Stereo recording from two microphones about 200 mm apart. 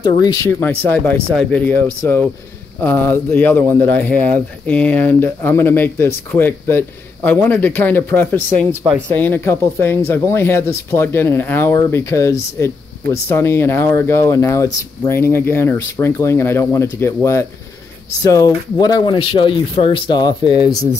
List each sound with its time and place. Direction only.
0.0 s speech: 20° left (ahead or behind)